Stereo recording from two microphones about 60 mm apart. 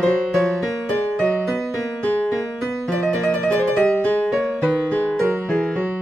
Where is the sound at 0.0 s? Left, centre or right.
Centre.